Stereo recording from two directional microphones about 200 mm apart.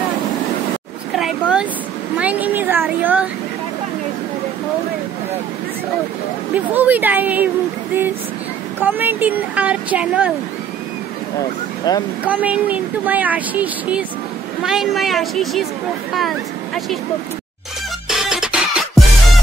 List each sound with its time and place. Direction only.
1.1 s a sound: 5° right (ahead or behind)
2.1 s speech: 10° right (ahead or behind)
6.5 s speech: 10° right (ahead or behind)
8.8 s speech: 10° right (ahead or behind)
11.9 s speech: 20° left (ahead or behind)
12.3 s a woman's voice: 5° right (ahead or behind)
18.0 s music: 5° right (ahead or behind)